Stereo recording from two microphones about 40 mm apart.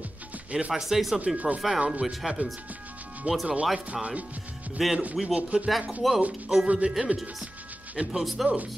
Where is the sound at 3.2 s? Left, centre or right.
Right.